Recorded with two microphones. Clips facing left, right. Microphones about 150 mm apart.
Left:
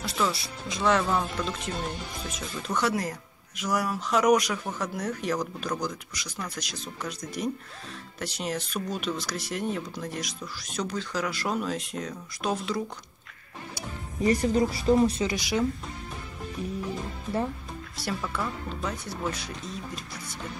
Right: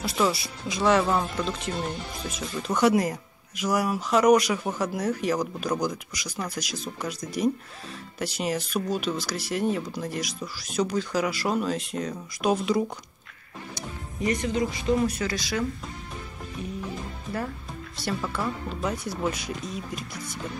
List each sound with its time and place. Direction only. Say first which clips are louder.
0.0 s speech: right 3 dB; 10° right (ahead or behind)
2.7 s speech: right 6 dB; 15° right (ahead or behind)
12.4 s speech: right 6 dB; 15° right (ahead or behind)
14.2 s speech: left 3 dB; 35° left (ahead or behind)
15.3 s speech: left 1 dB; 15° left (ahead or behind)
18.2 s speech: right 2 dB; 5° right (ahead or behind)